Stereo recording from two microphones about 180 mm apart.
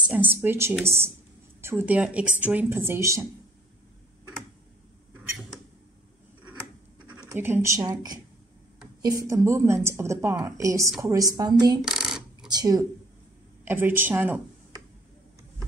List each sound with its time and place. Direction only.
0.0 s a woman's voice: 10° right (ahead or behind)
7.1 s a woman's voice: 10° right (ahead or behind)
11.8 s a sound: 5° right (ahead or behind)
12.4 s speech: 20° right (ahead or behind)